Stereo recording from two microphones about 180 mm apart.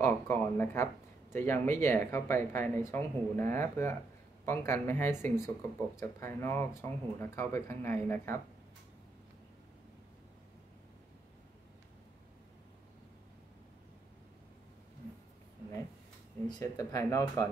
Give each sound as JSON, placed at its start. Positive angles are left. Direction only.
{"t": 0.0, "sound": "speech", "side_deg": 10}
{"t": 16.4, "sound": "speech", "side_deg": 20}